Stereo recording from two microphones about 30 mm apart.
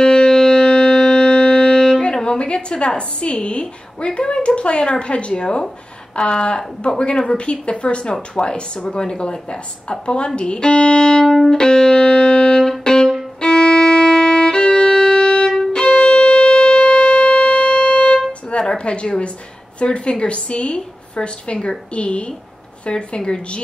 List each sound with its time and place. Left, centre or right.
0.1 s music: centre
0.9 s music: centre
1.2 s music: left
1.5 s music: left
2.2 s a woman's voice: left
10.6 s music: left
11.2 s music: centre
11.5 s music: left
12.0 s music: left
12.8 s violin: left
15.0 s music: left
15.7 s violin: left
16.9 s music: left
18.8 s a woman's voice: left